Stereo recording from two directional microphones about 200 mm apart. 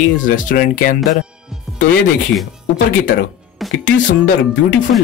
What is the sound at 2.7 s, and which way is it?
Speech, 65° left (ahead or behind).